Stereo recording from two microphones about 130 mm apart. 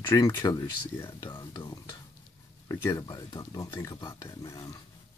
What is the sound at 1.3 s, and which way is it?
Speech, 35° left (ahead or behind).